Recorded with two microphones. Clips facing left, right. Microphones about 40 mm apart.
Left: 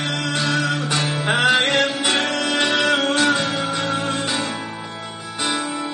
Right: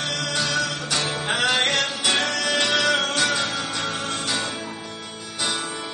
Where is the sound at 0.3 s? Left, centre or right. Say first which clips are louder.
Left 4 dB; centre.